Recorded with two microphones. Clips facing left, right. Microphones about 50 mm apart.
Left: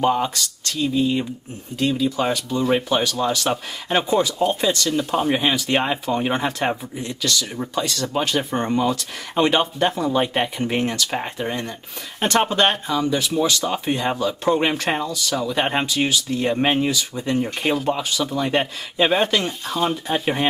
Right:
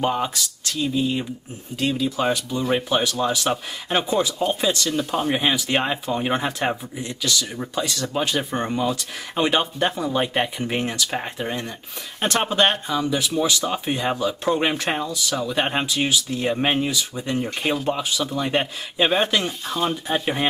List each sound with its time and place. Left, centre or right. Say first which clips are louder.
0.0 s speech: left 3 dB; centre
12.2 s speech: left 2 dB; centre
15.6 s speech: left 3 dB; centre
15.9 s speech: left 1 dB; centre